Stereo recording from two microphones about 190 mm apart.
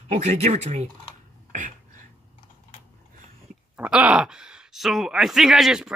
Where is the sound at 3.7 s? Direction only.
5° right (ahead or behind).